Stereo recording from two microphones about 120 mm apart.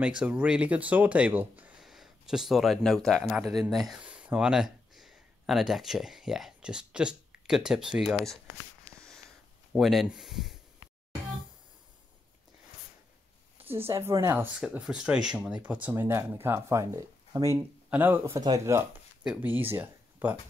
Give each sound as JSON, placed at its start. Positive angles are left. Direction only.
{"t": 0.2, "sound": "speech", "side_deg": -10}
{"t": 9.7, "sound": "speech", "side_deg": 0}
{"t": 13.8, "sound": "speech", "side_deg": -20}
{"t": 14.7, "sound": "speech", "side_deg": -5}
{"t": 17.8, "sound": "speech", "side_deg": -15}
{"t": 19.2, "sound": "speech", "side_deg": -10}